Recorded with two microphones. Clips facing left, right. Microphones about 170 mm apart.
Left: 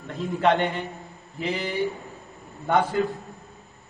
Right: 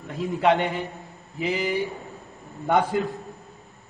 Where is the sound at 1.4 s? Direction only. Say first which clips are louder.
Right 3 dB; 10° right (ahead or behind).